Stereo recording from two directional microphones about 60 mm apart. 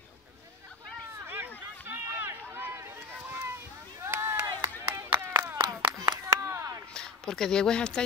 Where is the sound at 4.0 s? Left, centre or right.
Right.